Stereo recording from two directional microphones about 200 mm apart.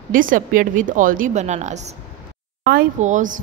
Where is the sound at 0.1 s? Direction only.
45° right (ahead or behind).